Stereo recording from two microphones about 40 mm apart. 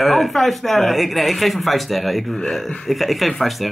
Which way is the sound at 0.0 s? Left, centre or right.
Centre.